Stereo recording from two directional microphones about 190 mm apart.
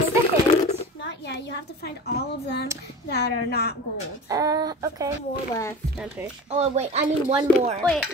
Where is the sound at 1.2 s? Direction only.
65° left (ahead or behind).